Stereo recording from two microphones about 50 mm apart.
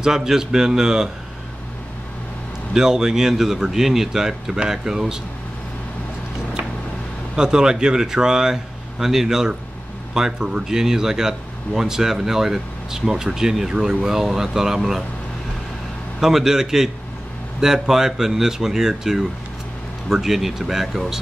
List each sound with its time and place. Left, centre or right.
0.0 s speech: centre
2.7 s speech: centre
7.3 s speech: centre
16.2 s speech: centre